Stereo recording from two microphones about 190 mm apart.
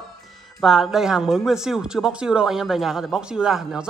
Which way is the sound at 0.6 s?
Centre (ahead or behind).